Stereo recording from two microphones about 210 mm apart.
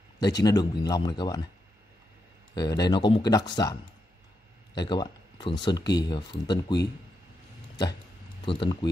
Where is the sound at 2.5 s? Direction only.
20° left (ahead or behind).